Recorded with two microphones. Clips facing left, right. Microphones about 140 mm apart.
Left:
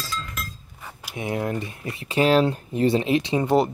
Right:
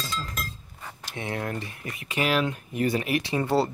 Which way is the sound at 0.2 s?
35° right (ahead or behind).